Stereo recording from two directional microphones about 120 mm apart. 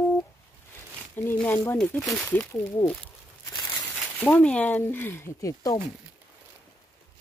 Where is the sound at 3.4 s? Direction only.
30° left (ahead or behind).